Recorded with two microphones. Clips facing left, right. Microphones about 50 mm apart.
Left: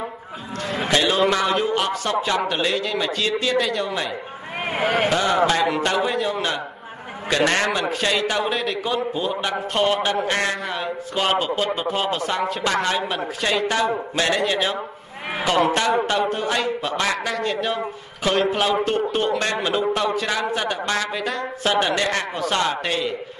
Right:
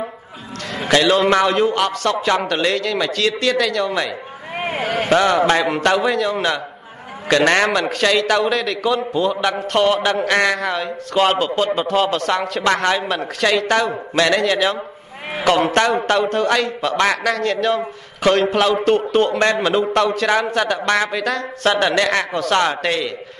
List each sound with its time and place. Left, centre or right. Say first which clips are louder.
0.8 s a man's voice: right 5 dB; right
4.6 s vehicle: right 2 dB; centre
5.1 s a man's voice: right 4 dB; right
5.8 s a man's voice: right 4 dB; right
7.2 s a man's voice: right 5 dB; right
7.9 s a man's voice: right 5 dB; right
15.4 s a man's voice: right 4 dB; right
16.1 s a man's voice: right 5 dB; right
21.1 s speech: right 4 dB; right
21.6 s a man's voice: right 4 dB; right